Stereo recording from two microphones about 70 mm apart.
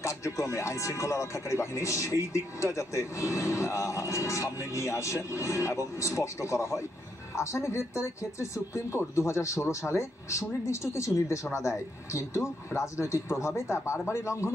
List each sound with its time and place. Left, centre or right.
0.0 s speech: left